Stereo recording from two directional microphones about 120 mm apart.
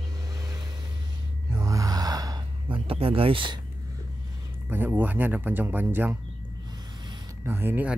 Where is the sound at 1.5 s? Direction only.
30° right (ahead or behind).